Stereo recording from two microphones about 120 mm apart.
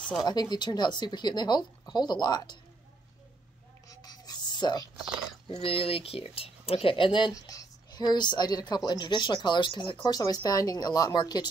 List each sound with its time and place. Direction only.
0.2 s speech: 35° left (ahead or behind)
3.9 s whispering: 30° left (ahead or behind)
5.6 s speech: 50° left (ahead or behind); by 11.4 s 35° left (ahead or behind)